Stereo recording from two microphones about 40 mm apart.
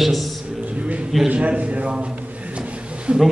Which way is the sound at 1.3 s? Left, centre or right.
Right.